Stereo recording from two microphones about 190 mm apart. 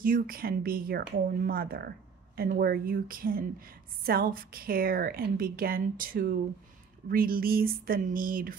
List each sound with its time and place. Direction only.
0.0 s speech: 50° right (ahead or behind)